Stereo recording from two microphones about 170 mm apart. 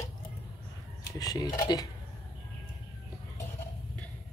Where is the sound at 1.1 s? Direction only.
20° left (ahead or behind).